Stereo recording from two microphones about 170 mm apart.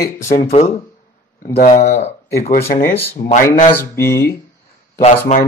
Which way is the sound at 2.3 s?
60° left (ahead or behind).